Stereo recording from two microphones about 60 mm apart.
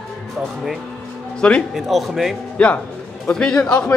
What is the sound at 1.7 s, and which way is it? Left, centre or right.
Speech, centre.